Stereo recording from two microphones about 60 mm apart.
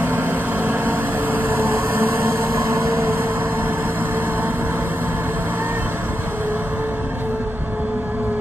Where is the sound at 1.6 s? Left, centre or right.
Right.